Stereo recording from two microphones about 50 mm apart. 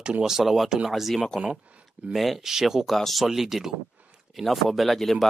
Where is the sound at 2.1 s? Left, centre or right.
Centre.